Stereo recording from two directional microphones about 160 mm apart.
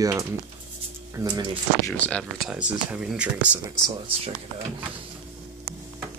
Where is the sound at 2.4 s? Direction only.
5° right (ahead or behind).